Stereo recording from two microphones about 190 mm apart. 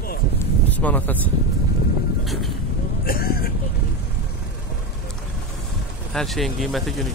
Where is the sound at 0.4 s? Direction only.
10° left (ahead or behind).